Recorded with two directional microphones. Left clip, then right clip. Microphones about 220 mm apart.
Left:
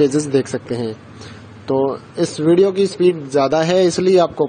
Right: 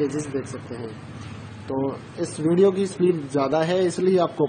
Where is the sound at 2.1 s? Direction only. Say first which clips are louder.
Left 7 dB; 25° left (ahead or behind).